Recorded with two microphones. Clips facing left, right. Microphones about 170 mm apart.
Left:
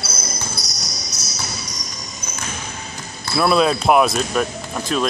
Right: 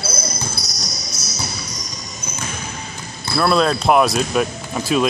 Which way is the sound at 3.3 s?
5° left (ahead or behind).